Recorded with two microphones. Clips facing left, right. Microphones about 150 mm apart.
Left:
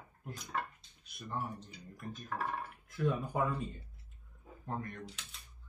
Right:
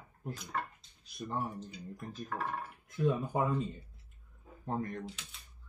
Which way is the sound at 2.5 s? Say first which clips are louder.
Right 1 dB; 20° right (ahead or behind).